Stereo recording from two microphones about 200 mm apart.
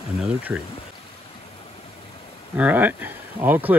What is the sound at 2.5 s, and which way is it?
Speech, 10° right (ahead or behind).